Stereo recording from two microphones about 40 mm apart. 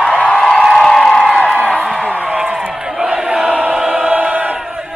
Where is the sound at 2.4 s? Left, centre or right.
Centre.